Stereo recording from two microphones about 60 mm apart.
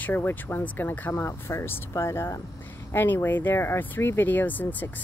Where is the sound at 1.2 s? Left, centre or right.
Left.